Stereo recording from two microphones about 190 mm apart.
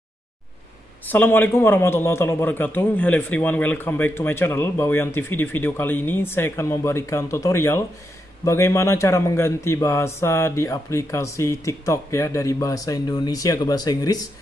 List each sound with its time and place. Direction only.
1.0 s a man's voice: 10° left (ahead or behind)